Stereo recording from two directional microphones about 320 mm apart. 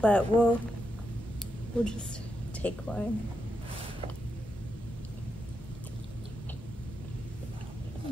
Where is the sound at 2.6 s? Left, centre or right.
Centre.